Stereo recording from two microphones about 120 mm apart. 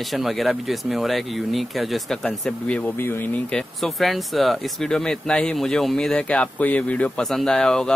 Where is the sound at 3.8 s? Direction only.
Centre (ahead or behind).